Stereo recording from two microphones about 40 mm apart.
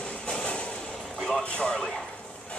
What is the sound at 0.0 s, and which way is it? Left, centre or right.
Vehicle, left.